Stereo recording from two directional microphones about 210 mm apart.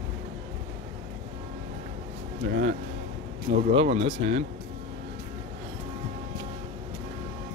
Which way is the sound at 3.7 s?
25° right (ahead or behind).